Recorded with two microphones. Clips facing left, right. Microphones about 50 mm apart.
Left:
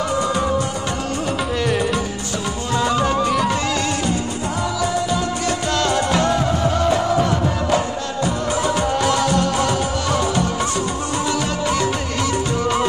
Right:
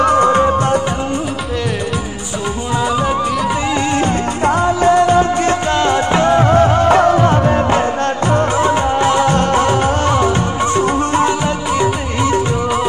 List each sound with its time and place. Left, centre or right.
0.0 s music: right
2.7 s music: centre
4.5 s music: right
6.4 s music of bollywood: right
7.0 s music: right
8.3 s music of bollywood: right
9.3 s music: right